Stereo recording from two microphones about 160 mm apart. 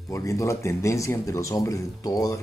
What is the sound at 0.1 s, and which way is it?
Speech, 20° left (ahead or behind).